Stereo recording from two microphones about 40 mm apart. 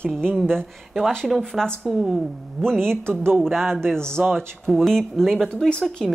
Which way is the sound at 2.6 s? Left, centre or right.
Centre.